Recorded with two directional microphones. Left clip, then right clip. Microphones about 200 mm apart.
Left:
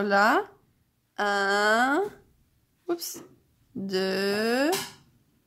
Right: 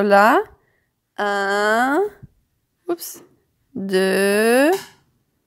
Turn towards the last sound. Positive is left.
turn(degrees=-35)  # may be behind; listen again after turning